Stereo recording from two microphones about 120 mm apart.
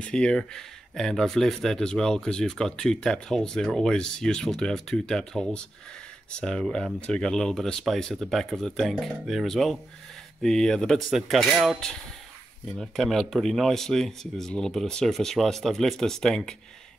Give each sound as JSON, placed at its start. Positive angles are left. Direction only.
{"t": 0.0, "sound": "speech", "side_deg": 5}